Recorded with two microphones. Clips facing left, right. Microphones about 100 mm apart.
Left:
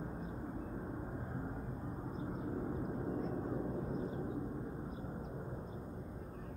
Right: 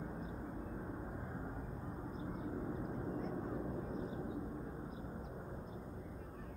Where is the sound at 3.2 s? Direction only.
5° left (ahead or behind).